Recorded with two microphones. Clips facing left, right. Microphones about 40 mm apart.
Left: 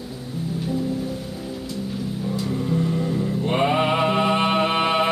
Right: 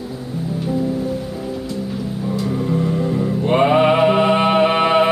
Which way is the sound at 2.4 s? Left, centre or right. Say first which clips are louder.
Right 4 dB; centre.